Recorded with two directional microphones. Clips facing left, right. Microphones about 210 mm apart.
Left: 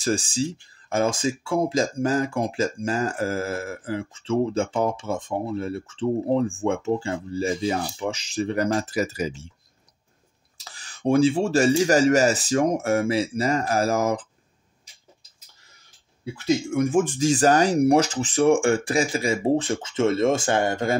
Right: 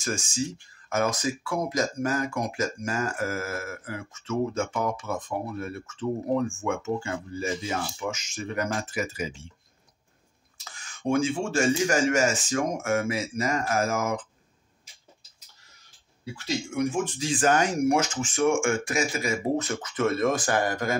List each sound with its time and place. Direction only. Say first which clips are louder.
0.0 s speech: left 6 dB; 35° left (ahead or behind)
10.6 s speech: left 5 dB; 35° left (ahead or behind)
16.4 s speech: left 6 dB; 50° left (ahead or behind); by 20.9 s 25° left (ahead or behind)